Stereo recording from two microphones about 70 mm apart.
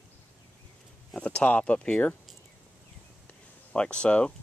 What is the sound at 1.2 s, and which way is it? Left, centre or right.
Speech, centre.